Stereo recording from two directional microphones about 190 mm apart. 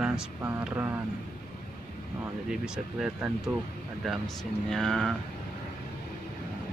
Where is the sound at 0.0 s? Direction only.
10° right (ahead or behind).